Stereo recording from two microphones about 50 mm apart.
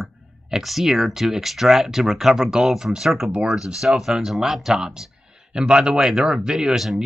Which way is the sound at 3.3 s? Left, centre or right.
Right.